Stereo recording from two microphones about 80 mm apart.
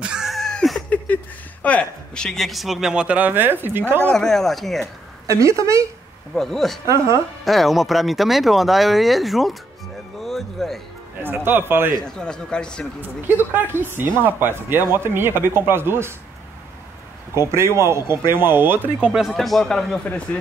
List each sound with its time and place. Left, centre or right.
0.0 s a sound: centre
0.4 s a sound: centre
1.6 s a man's voice: centre; by 4.0 s right
4.0 s speech: centre
5.2 s speech: right
6.3 s speech: centre
11.4 s speech: right
12.0 s speech: centre
13.0 s speech: right
17.4 s speech: right
18.9 s a man's voice: centre